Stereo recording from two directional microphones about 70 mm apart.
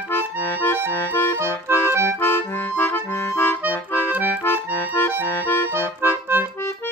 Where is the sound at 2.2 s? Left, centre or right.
Left.